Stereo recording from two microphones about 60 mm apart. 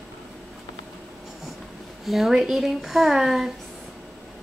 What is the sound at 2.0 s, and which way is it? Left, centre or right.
Speech, centre.